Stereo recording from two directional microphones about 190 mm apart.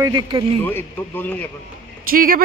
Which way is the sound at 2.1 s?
50° right (ahead or behind).